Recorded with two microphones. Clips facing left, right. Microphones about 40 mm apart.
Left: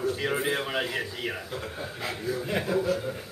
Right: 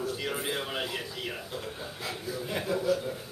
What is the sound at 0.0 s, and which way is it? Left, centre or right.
A man's voice, left.